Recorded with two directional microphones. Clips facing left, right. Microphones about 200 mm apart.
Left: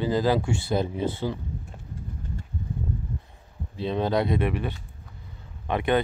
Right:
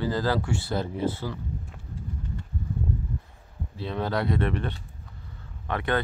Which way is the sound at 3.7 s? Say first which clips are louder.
Left 4 dB; 20° left (ahead or behind).